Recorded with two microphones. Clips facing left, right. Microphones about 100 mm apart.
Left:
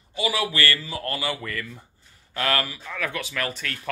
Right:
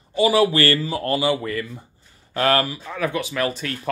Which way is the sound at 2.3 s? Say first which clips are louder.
Right 6 dB; 30° right (ahead or behind).